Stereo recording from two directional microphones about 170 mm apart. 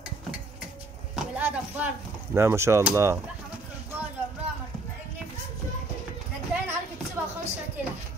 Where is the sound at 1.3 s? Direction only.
10° right (ahead or behind).